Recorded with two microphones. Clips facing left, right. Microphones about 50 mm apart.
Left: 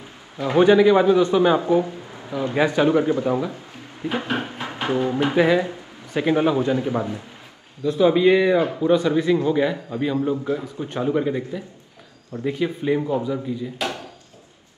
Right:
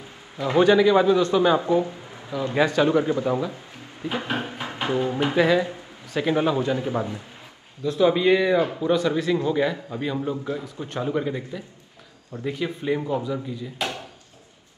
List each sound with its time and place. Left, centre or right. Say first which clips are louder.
0.4 s a man's voice: left 2 dB; left
2.5 s a man's voice: left 1 dB; centre
4.0 s a sound: left 2 dB; left
4.8 s speech: left 2 dB; left
5.3 s a man's voice: left 1 dB; centre
6.7 s a man's voice: left 3 dB; left
7.8 s speech: left 3 dB; centre
9.5 s speech: left 2 dB; centre